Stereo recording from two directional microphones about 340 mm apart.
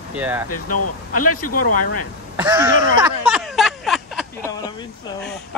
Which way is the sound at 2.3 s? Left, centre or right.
Centre.